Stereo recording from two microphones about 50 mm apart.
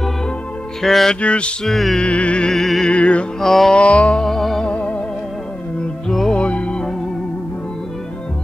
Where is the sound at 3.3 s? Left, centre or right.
Centre.